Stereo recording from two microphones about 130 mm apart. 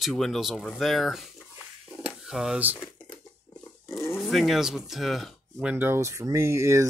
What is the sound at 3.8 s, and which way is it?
Dog, 20° left (ahead or behind).